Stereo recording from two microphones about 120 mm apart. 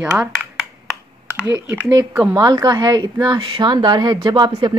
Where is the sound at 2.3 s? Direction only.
30° right (ahead or behind).